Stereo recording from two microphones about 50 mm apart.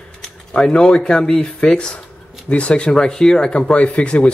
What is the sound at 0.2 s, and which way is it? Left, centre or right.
Speech, centre.